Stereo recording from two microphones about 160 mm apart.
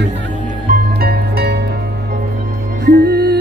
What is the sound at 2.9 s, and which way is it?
Music, 85° right.